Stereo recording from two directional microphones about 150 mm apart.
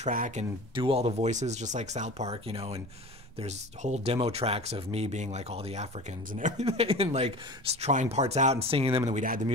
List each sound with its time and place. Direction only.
0.1 s speech: 60° right (ahead or behind)
0.7 s speech: 40° right (ahead or behind)
9.1 s speech: 65° right (ahead or behind)